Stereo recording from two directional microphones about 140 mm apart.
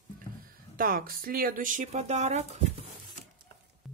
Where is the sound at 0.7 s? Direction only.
90° right; by 1.9 s 75° right (ahead or behind).